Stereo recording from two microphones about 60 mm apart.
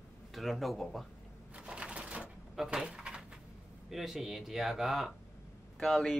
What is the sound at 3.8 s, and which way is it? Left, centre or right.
Speech, centre.